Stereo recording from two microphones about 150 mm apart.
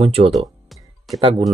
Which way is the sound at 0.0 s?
40° right (ahead or behind).